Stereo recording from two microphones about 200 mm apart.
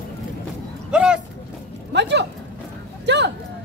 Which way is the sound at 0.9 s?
5° right (ahead or behind).